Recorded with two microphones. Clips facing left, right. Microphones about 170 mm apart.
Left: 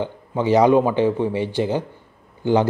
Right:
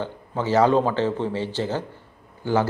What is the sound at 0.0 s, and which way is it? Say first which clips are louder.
A man's voice: left 5 dB; 15° left (ahead or behind).